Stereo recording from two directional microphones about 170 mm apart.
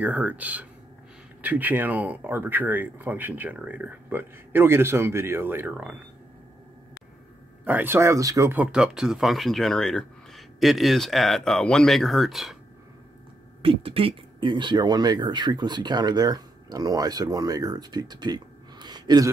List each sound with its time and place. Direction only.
0.0 s speech: 10° right (ahead or behind)
7.6 s speech: 10° right (ahead or behind)
13.6 s speech: 35° right (ahead or behind)